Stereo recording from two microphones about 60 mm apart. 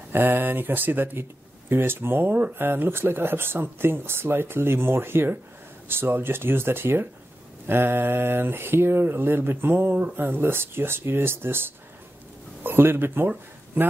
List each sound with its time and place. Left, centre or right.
0.1 s speech: right